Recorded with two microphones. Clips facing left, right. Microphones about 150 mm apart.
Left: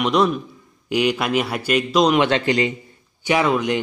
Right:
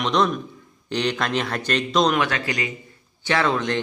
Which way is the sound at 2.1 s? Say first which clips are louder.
Left 6 dB; 25° left (ahead or behind).